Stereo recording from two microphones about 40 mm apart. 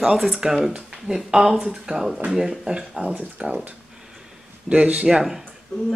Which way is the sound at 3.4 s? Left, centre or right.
Right.